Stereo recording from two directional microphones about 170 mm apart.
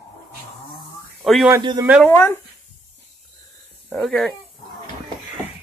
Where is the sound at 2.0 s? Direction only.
10° left (ahead or behind).